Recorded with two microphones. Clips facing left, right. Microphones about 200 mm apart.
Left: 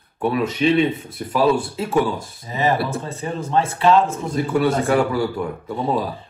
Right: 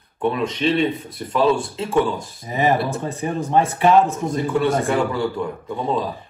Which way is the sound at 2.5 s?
15° right (ahead or behind).